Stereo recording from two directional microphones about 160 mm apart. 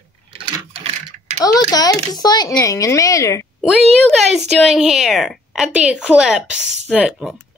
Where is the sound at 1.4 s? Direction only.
25° left (ahead or behind).